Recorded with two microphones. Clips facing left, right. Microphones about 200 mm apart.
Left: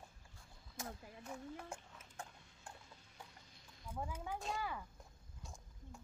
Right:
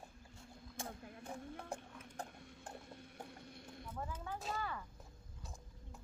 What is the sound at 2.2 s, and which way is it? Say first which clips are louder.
Clip-clop: right 4 dB; 35° right (ahead or behind).